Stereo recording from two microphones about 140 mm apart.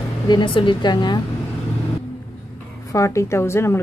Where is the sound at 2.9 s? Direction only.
20° left (ahead or behind).